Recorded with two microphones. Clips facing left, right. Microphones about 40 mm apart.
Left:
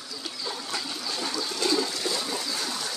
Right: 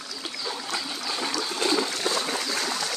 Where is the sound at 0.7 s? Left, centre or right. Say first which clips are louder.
Right 3 dB; right.